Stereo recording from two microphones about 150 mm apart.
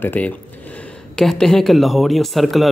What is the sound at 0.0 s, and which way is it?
Speech, 10° left (ahead or behind).